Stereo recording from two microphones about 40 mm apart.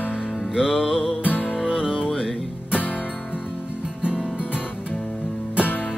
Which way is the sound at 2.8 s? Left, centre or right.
Left.